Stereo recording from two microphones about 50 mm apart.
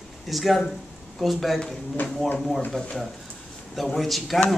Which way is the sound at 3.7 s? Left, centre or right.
Centre.